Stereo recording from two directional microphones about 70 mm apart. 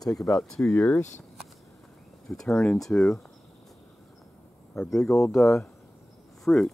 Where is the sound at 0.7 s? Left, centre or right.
Left.